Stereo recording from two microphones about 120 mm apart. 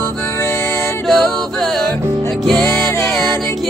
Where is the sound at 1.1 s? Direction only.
Centre (ahead or behind).